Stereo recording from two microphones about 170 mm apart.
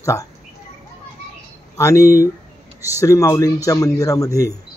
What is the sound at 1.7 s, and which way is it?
Speech, 20° left (ahead or behind).